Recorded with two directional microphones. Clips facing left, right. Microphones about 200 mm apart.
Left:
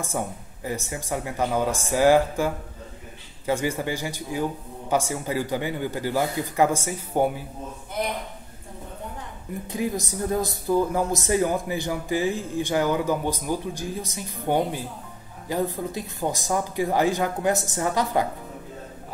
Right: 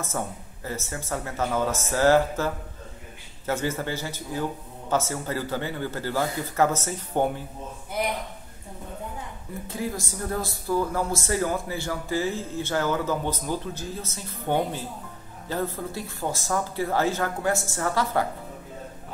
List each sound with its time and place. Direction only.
0.0 s speech: 15° left (ahead or behind)
9.7 s speech: 20° left (ahead or behind)